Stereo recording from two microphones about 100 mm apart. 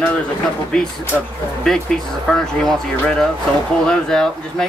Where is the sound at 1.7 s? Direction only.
5° left (ahead or behind).